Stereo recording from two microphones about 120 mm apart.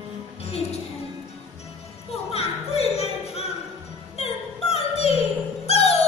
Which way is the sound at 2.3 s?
60° left (ahead or behind).